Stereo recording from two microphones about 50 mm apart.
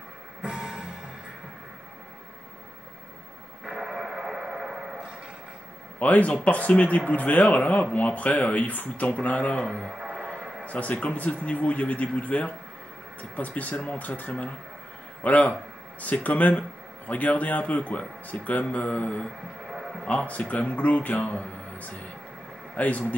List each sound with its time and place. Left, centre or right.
0.4 s music: centre
3.6 s radio: centre
5.9 s speech: left
9.8 s a sound: centre
10.6 s speech: left
19.7 s a sound: centre
20.1 s speech: left